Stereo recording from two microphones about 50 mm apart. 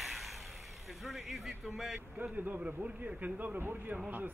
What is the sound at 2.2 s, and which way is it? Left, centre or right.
A man's voice, right.